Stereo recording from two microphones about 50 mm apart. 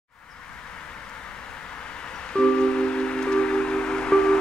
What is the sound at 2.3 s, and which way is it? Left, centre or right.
Music, centre.